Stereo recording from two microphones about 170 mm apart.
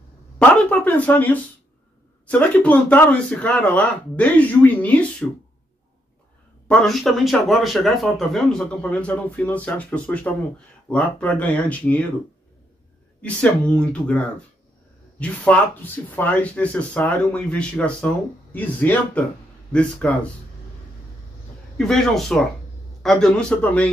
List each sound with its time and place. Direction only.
0.4 s speech: 10° left (ahead or behind)
6.7 s speech: centre (ahead or behind)
13.2 s speech: 5° left (ahead or behind)
21.7 s speech: centre (ahead or behind)